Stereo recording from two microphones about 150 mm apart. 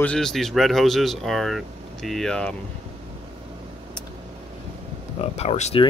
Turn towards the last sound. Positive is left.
turn(degrees=40)  # may be behind; listen again after turning